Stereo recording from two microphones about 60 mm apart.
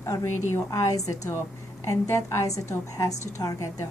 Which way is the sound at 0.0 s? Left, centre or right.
Left.